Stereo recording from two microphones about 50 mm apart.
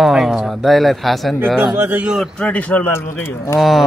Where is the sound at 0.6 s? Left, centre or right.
Centre.